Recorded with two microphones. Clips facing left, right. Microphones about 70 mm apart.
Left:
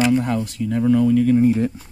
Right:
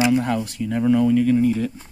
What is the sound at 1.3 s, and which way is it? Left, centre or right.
Speech, left.